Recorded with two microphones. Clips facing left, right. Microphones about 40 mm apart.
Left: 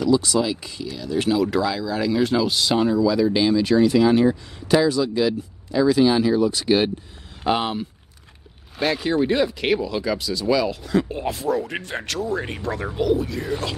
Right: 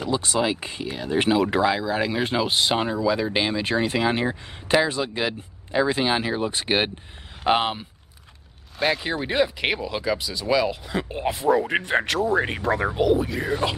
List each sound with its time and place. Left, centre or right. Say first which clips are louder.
0.0 s speech: left 4 dB; right
8.7 s speech: left 3 dB; centre